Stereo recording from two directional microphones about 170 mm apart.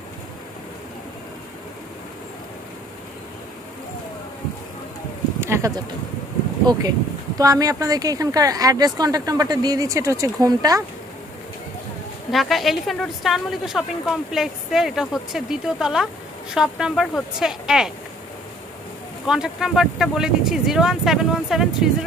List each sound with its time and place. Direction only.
5.4 s a sound: 15° right (ahead or behind)
6.7 s speech: 25° right (ahead or behind)
12.3 s a woman's voice: centre (ahead or behind)
19.2 s a woman's voice: 5° right (ahead or behind)